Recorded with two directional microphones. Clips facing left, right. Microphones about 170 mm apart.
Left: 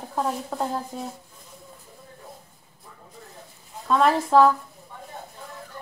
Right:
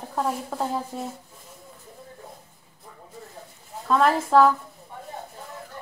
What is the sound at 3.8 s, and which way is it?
Speech, centre (ahead or behind).